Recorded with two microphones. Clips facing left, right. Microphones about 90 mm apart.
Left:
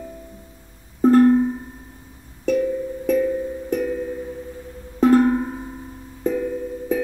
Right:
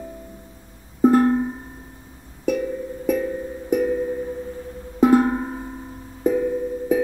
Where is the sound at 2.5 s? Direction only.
10° right (ahead or behind).